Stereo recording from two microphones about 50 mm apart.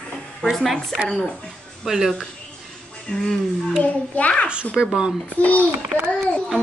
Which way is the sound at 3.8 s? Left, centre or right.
Left.